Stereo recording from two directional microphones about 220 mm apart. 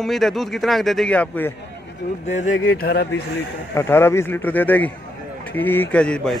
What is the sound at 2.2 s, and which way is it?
Speech, 35° left (ahead or behind).